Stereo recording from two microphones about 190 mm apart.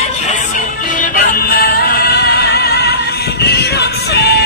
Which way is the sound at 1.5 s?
50° left (ahead or behind).